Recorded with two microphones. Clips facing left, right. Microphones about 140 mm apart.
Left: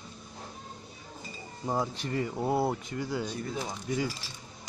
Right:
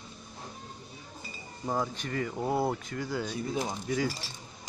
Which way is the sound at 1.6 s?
10° left (ahead or behind).